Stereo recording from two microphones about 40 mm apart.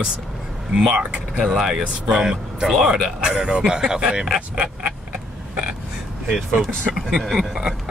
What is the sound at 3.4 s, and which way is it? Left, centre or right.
Speech, right.